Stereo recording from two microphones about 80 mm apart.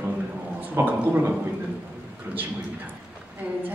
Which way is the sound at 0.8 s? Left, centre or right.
Right.